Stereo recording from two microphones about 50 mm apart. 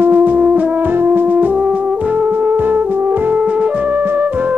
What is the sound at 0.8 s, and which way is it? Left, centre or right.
Brass instrument, right.